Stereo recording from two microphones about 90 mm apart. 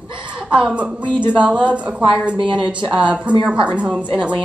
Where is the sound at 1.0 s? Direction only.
60° right (ahead or behind).